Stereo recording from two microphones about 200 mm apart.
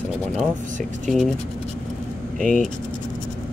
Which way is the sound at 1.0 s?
Centre (ahead or behind).